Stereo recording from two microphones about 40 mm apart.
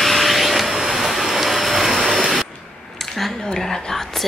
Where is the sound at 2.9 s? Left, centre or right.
Centre.